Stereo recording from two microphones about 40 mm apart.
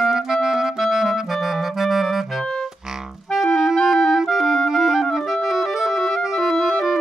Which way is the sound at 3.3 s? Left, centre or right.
Centre.